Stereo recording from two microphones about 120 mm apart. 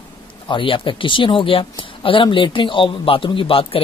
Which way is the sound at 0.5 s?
45° left (ahead or behind).